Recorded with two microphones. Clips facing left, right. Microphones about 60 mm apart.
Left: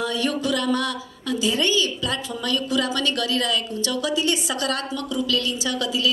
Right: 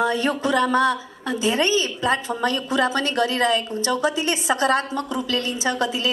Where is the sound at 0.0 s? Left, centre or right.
Right.